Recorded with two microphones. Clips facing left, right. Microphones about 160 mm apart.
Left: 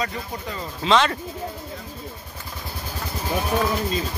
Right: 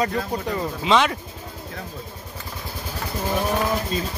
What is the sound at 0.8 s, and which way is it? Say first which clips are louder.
Speech: left 1 dB; 10° right (ahead or behind).